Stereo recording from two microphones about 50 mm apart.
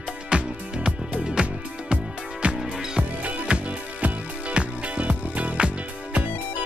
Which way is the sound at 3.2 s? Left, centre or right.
Right.